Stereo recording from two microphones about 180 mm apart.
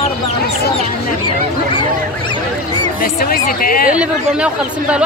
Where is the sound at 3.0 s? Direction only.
55° left (ahead or behind).